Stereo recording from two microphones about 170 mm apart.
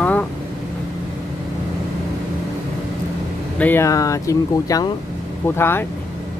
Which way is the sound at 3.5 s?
10° left (ahead or behind).